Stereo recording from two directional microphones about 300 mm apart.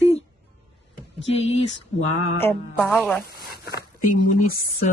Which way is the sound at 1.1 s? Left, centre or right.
Left.